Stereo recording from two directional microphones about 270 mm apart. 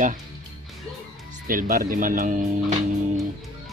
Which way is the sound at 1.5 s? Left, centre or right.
Right.